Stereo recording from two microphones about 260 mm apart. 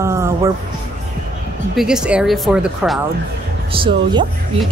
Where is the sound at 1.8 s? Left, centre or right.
Centre.